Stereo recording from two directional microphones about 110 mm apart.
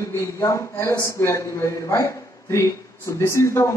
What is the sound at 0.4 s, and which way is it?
Speech, 25° left (ahead or behind).